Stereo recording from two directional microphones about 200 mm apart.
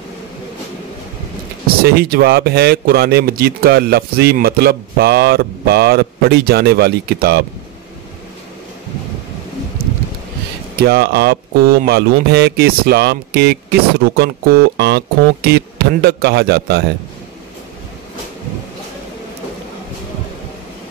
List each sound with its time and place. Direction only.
1.8 s speech: 50° right (ahead or behind)
10.8 s speech: 50° right (ahead or behind)